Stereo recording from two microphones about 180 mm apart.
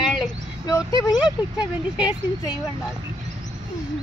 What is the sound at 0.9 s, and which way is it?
Speech, 25° left (ahead or behind).